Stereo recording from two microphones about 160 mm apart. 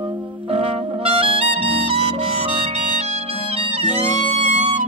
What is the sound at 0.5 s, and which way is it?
Music, 40° right (ahead or behind).